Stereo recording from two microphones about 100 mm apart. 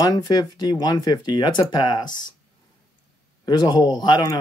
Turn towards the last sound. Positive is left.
turn(degrees=45)  # may be behind; listen again after turning